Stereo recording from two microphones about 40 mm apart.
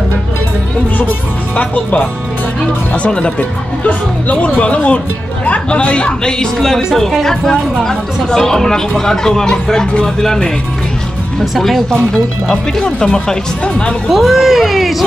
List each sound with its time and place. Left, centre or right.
1.6 s speech: left
3.1 s speech: left
3.3 s speech: left
7.0 s speech: centre
11.5 s speech: centre
11.9 s speech: left
14.0 s speech: centre